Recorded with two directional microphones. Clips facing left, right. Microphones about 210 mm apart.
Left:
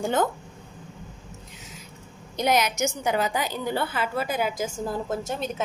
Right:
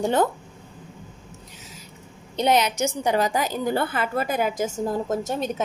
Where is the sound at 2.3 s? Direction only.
30° right (ahead or behind).